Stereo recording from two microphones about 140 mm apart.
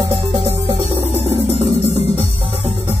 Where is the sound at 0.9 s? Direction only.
45° right (ahead or behind).